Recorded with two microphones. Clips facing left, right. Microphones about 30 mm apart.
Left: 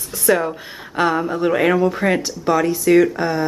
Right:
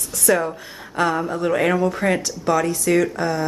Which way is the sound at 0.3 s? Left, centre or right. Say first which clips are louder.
Left 2 dB; centre.